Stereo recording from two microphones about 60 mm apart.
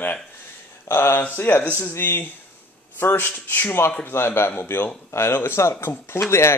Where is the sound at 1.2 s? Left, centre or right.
Left.